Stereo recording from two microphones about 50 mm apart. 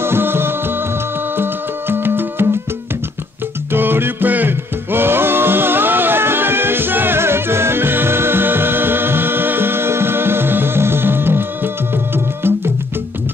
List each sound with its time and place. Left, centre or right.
0.0 s music: right
3.7 s music: right